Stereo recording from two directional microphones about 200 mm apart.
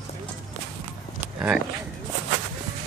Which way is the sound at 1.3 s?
5° right (ahead or behind).